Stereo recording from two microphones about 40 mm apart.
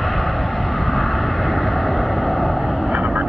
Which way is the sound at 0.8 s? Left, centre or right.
Centre.